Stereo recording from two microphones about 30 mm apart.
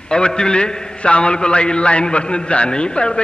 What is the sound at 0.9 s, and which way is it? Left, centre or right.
A man's voice, left.